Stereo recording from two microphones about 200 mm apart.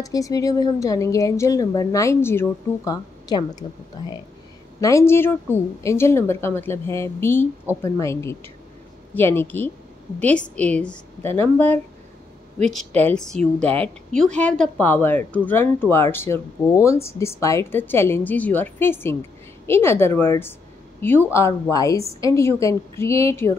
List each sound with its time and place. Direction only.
0.0 s speech: 15° left (ahead or behind)
4.7 s speech: 15° left (ahead or behind)
13.6 s a woman's voice: 30° right (ahead or behind)
14.1 s speech: 5° left (ahead or behind)